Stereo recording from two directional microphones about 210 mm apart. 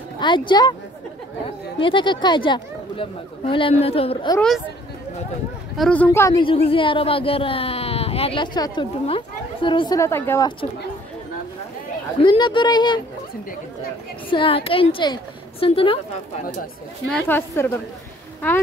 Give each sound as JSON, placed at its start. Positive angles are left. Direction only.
{"t": 0.2, "sound": "speech", "side_deg": 20}
{"t": 1.8, "sound": "speech", "side_deg": 25}
{"t": 5.8, "sound": "speech", "side_deg": 5}
{"t": 6.3, "sound": "speech", "side_deg": 25}
{"t": 12.2, "sound": "speech", "side_deg": 20}
{"t": 14.3, "sound": "speech", "side_deg": 25}
{"t": 17.1, "sound": "speech", "side_deg": 10}